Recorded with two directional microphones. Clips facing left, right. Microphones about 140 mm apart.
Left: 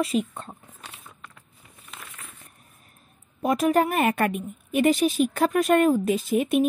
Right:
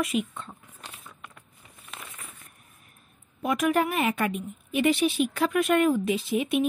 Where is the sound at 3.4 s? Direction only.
35° left (ahead or behind).